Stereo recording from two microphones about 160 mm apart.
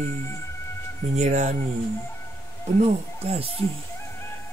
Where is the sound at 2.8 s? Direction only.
40° right (ahead or behind).